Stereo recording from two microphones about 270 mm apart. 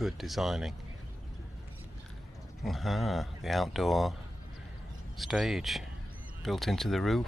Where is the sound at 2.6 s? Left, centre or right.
Centre.